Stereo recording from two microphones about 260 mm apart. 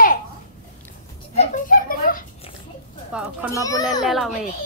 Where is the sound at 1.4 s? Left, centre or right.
Left.